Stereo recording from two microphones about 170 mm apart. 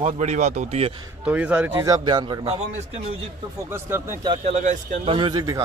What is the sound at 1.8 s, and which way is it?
Speech, 25° right (ahead or behind).